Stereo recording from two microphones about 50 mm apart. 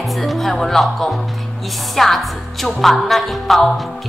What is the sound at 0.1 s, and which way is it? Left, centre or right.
Speech, centre.